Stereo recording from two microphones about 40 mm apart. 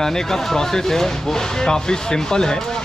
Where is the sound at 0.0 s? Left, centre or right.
Centre.